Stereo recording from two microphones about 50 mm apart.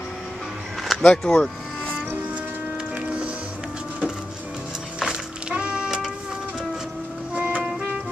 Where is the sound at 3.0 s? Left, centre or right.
Right.